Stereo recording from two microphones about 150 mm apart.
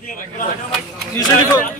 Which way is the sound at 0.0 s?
65° left (ahead or behind).